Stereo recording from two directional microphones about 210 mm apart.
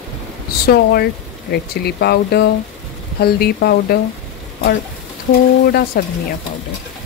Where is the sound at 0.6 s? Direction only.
50° left (ahead or behind).